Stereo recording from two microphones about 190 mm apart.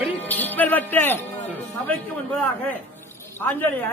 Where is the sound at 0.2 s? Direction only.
10° left (ahead or behind).